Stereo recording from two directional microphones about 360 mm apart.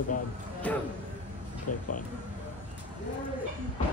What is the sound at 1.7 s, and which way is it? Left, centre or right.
Speech, left.